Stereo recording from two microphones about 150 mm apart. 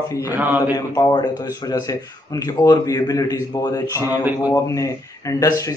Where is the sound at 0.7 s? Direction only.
25° left (ahead or behind).